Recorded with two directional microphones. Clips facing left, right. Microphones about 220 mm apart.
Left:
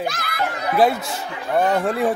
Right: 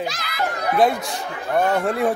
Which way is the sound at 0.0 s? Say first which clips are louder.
Left 2 dB; 55° left (ahead or behind).